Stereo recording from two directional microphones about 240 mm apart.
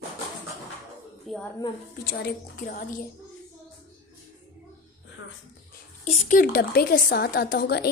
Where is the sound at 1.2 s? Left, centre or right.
Centre.